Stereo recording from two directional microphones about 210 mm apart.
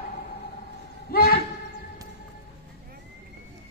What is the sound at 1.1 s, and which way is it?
Train, 45° left (ahead or behind).